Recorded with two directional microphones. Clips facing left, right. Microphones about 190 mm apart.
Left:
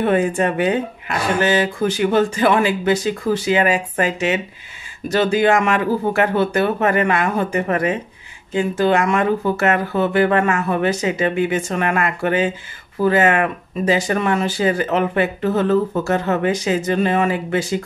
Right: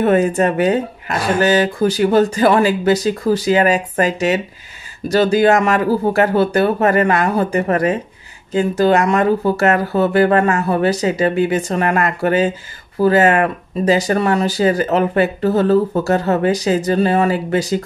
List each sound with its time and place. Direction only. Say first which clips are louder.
0.0 s speech: right 3 dB; 40° right (ahead or behind)